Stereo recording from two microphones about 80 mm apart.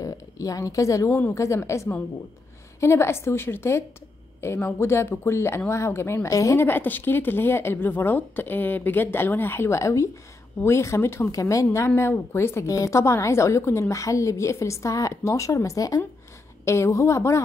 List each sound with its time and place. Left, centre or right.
0.0 s speech: left
1.0 s speech: left
1.3 s speech: left
6.6 s speech: left